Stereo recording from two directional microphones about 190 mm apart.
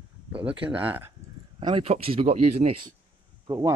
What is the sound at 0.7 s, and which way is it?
Speech, 10° right (ahead or behind).